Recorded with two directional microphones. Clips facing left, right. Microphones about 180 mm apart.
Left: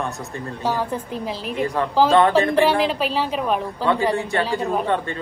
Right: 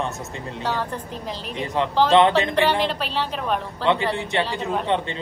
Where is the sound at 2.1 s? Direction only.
20° right (ahead or behind).